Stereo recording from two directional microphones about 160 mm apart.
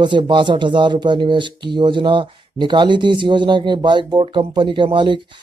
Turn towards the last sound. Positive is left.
turn(degrees=-30)  # may be behind; listen again after turning